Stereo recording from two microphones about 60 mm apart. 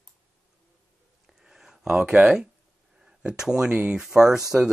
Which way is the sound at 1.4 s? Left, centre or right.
Centre.